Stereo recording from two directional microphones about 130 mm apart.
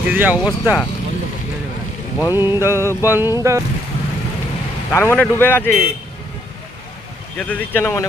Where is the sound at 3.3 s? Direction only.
20° right (ahead or behind).